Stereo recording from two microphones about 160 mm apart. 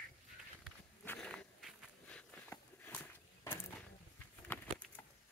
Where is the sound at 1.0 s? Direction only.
5° left (ahead or behind).